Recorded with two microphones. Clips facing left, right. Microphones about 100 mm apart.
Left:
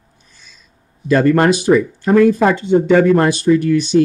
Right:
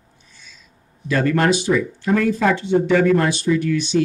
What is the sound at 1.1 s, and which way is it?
Speech, 50° left (ahead or behind).